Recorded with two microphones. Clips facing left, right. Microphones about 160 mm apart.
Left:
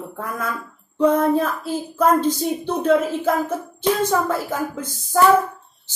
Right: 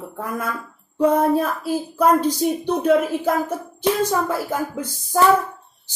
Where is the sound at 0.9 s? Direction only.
10° right (ahead or behind).